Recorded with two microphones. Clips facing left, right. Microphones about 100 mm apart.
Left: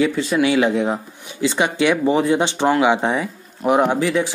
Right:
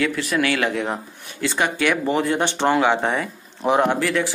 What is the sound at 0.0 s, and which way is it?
Speech, 20° left (ahead or behind).